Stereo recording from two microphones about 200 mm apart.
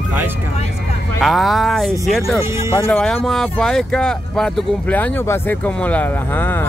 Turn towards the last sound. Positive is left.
turn(degrees=10)  # may be behind; listen again after turning